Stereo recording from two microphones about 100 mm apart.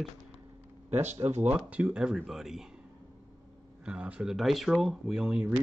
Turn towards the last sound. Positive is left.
turn(degrees=-5)  # may be behind; listen again after turning